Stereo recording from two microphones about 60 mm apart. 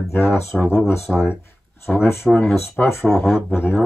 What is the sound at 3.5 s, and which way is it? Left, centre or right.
Speech, left.